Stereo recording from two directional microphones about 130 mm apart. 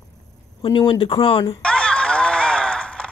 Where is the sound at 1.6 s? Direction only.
10° left (ahead or behind).